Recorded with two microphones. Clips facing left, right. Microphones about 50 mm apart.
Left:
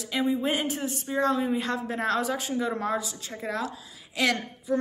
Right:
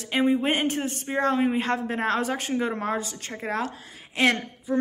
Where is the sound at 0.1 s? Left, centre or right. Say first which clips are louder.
Right 4 dB; right.